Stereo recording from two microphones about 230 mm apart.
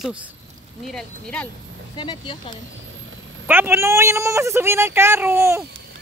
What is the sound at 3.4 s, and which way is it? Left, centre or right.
A man's voice, centre.